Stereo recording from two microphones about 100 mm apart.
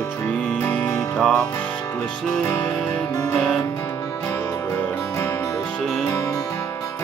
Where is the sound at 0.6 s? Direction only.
20° left (ahead or behind).